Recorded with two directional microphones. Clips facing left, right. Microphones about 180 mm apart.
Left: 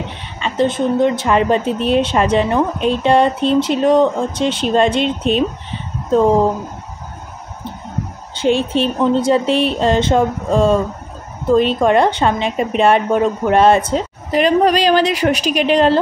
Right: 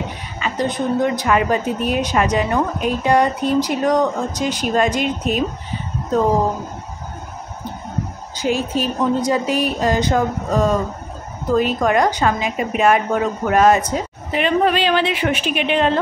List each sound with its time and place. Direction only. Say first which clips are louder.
0.4 s a woman's voice: left 5 dB; 25° left (ahead or behind)
8.4 s a woman's voice: left 5 dB; 30° left (ahead or behind)